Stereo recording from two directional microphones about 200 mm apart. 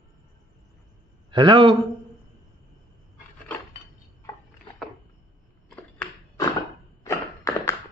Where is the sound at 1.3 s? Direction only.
25° right (ahead or behind).